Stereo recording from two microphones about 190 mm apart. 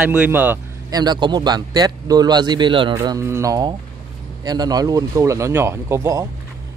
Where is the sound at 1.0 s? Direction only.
20° right (ahead or behind).